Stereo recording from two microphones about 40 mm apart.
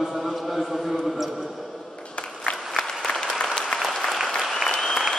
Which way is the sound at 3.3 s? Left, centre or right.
Left.